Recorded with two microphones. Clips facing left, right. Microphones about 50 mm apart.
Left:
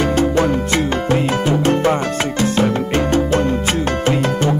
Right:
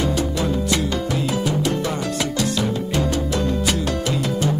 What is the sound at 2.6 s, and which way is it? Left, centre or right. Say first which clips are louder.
Music: left 5 dB; left.